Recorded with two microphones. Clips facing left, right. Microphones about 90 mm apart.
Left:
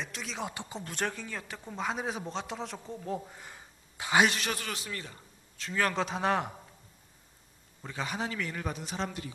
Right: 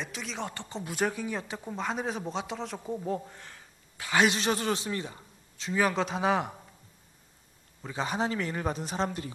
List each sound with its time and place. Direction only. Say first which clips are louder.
0.0 s speech: right 1 dB; centre (ahead or behind)
0.8 s a man's voice: right 6 dB; 5° right (ahead or behind)
1.7 s a man's voice: right 1 dB; centre (ahead or behind); by 4.2 s 15° left (ahead or behind)
4.3 s a man's voice: right 7 dB; 25° right (ahead or behind); by 6.5 s centre (ahead or behind)
7.9 s speech: right 5 dB; 30° right (ahead or behind)